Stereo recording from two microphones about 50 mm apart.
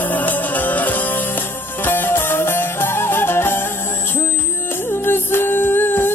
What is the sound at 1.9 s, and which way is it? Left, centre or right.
Music, left.